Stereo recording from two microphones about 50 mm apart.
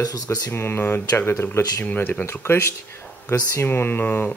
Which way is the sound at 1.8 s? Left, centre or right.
Left.